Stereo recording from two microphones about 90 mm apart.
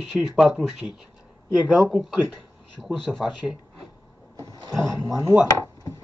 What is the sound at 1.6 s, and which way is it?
Speech, 10° right (ahead or behind).